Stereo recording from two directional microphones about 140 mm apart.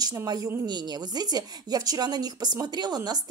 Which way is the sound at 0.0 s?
25° right (ahead or behind).